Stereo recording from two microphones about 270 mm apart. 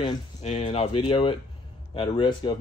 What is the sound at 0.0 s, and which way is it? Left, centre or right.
Speech, left.